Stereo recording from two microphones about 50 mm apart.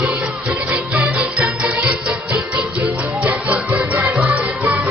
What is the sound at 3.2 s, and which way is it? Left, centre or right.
Music, right.